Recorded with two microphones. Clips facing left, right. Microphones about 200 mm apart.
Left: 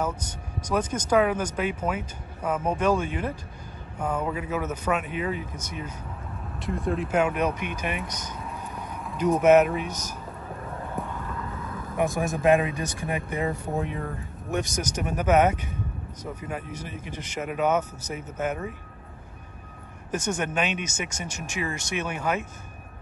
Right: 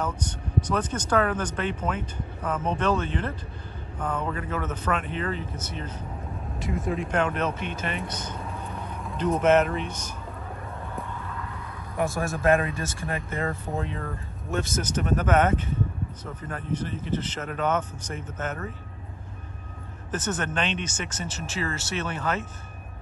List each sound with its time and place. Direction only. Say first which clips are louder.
0.0 s speech: left 1 dB; 10° left (ahead or behind)
6.6 s speech: left 1 dB; centre (ahead or behind)
12.0 s speech: left 2 dB; 15° left (ahead or behind)
20.1 s speech: left 1 dB; 10° left (ahead or behind)